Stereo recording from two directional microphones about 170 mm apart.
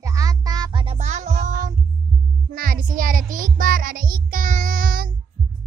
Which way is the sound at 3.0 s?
55° right (ahead or behind).